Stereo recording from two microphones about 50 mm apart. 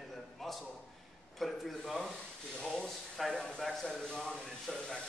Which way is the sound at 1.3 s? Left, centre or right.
Centre.